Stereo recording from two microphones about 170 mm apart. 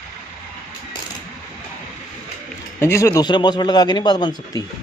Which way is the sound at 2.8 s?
15° left (ahead or behind).